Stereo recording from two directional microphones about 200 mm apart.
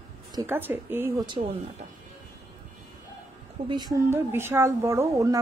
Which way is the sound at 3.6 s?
20° right (ahead or behind).